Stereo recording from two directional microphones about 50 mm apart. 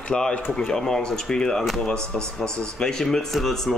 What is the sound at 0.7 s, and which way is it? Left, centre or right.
Speech, centre.